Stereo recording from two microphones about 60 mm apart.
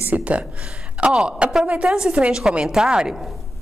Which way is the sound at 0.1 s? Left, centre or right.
Right.